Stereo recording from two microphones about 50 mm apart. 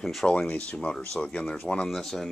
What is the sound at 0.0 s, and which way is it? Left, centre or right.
Speech, centre.